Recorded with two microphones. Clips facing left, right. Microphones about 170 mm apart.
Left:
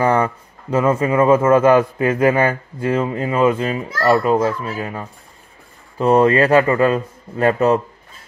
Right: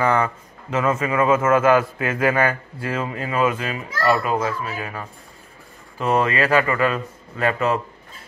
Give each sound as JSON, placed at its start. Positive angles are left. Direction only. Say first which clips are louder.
{"t": 0.0, "sound": "a man's voice", "louder": "left 3 dB", "side_deg": 30}